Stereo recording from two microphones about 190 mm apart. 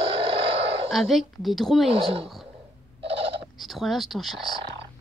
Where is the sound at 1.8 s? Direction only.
30° right (ahead or behind).